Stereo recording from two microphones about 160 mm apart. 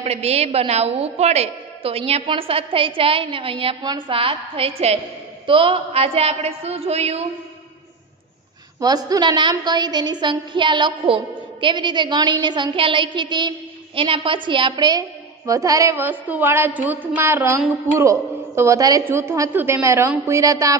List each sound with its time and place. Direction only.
0.0 s a woman's voice: 40° right (ahead or behind)
8.8 s a woman's voice: 25° right (ahead or behind)